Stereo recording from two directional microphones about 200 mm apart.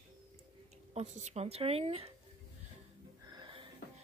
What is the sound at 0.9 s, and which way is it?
Speech, 35° right (ahead or behind).